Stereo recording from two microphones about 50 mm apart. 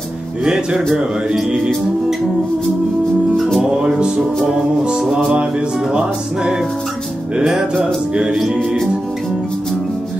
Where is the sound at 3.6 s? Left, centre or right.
Centre.